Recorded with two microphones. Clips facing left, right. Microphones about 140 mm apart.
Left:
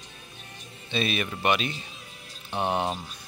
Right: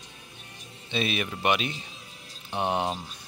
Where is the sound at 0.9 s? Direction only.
15° right (ahead or behind).